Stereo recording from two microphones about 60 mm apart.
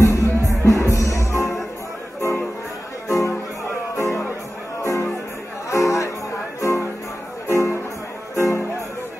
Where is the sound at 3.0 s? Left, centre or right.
Left.